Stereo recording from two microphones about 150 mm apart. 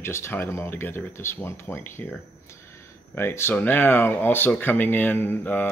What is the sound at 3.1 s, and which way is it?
Speech, 15° left (ahead or behind).